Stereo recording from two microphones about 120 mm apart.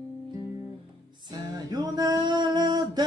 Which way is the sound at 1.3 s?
30° right (ahead or behind).